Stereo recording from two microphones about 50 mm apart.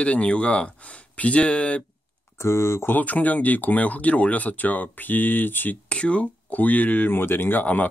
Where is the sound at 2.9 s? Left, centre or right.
Left.